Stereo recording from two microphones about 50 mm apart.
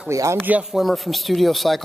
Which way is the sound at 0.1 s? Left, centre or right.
Right.